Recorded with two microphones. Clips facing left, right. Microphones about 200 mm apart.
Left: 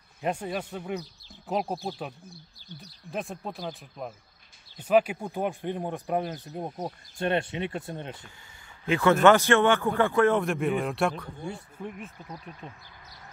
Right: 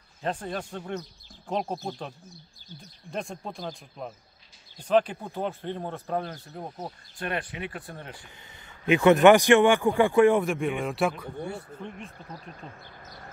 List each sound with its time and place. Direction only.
0.2 s speech: 10° left (ahead or behind)
8.8 s speech: 20° right (ahead or behind)
10.4 s speech: centre (ahead or behind)
11.8 s speech: 10° left (ahead or behind)